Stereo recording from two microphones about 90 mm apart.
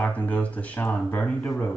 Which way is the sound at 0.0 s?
15° left (ahead or behind).